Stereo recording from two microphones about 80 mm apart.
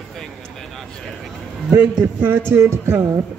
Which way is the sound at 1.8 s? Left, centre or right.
Right.